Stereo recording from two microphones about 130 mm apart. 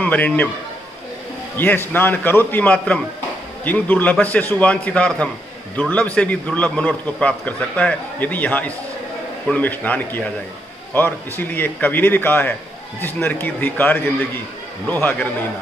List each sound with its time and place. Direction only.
0.0 s a man's voice: 10° left (ahead or behind)
1.6 s a man's voice: 15° left (ahead or behind)